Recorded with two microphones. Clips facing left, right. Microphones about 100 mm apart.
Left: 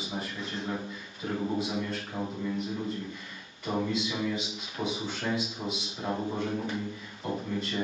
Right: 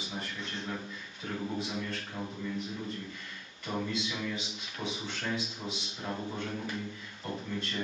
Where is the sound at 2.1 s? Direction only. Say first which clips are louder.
Left 5 dB; 20° left (ahead or behind).